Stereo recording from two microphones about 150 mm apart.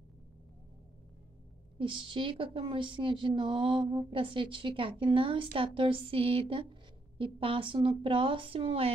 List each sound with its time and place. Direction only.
1.8 s a woman's voice: 35° right (ahead or behind)